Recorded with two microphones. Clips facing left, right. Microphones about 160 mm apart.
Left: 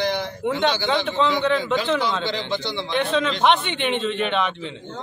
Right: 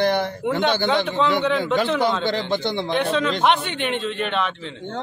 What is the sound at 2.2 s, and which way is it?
Speech, 50° right (ahead or behind).